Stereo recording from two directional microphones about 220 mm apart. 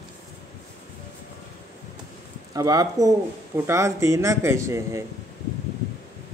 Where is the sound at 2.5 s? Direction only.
15° right (ahead or behind).